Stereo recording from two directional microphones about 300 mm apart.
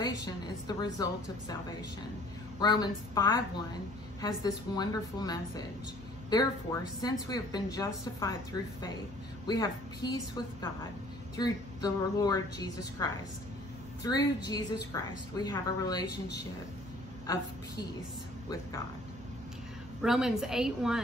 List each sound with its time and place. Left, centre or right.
0.0 s a sound: centre
2.6 s a woman's voice: centre
7.0 s a woman's voice: centre
9.5 s a woman's voice: centre
20.0 s a woman's voice: centre